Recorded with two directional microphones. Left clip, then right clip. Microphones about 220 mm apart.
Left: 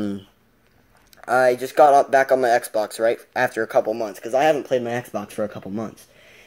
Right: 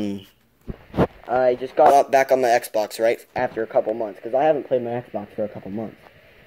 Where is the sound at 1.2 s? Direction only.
40° left (ahead or behind).